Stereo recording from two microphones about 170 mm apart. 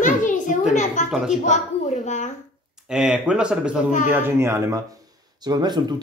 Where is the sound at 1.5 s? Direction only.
45° left (ahead or behind).